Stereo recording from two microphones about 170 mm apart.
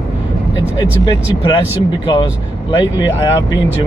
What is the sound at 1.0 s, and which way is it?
Speech, 25° left (ahead or behind).